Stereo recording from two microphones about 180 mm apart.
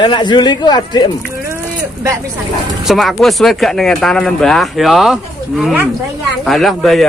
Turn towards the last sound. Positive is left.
turn(degrees=0)  # may be behind; listen again after turning